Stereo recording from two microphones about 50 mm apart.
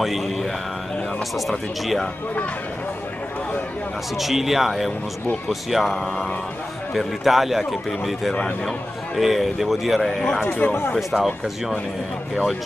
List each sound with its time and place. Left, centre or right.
0.0 s speech: centre
4.2 s speech: centre
10.4 s speech: left
11.0 s speech: centre